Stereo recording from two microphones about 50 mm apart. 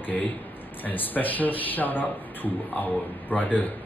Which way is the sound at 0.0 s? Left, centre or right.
Left.